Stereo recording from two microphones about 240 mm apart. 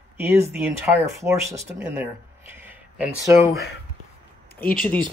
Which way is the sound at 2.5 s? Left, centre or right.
Centre.